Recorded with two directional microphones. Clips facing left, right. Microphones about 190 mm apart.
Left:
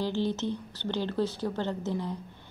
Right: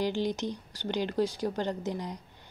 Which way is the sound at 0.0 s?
15° right (ahead or behind).